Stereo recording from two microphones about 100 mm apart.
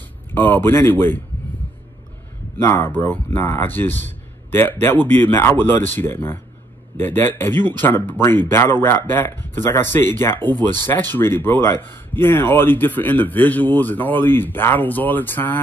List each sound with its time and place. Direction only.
0.3 s speech: 20° left (ahead or behind)
2.5 s speech: 25° left (ahead or behind)